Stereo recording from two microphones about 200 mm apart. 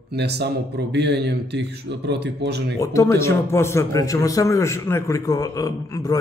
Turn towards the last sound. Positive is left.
turn(degrees=15)  # may be behind; listen again after turning